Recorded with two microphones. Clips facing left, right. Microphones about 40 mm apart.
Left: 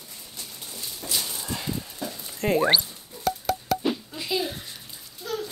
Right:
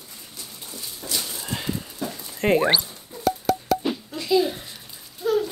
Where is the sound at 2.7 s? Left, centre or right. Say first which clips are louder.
Even; centre.